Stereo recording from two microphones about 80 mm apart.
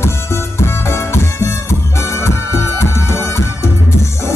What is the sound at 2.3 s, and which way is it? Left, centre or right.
Music, left.